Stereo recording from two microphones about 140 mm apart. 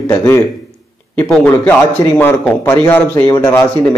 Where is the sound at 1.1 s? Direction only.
10° left (ahead or behind).